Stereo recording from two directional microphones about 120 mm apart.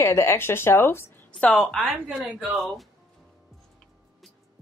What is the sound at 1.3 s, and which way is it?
Speech, 5° left (ahead or behind).